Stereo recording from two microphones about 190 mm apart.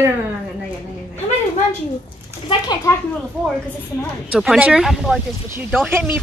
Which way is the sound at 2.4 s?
20° left (ahead or behind).